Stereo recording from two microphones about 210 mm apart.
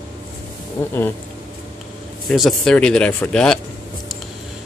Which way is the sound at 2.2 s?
Centre (ahead or behind).